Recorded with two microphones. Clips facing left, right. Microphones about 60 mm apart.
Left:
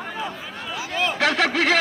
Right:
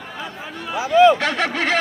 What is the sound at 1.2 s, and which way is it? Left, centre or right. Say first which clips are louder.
Speech: left 1 dB; centre.